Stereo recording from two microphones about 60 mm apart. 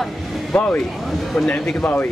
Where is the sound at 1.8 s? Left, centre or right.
Left.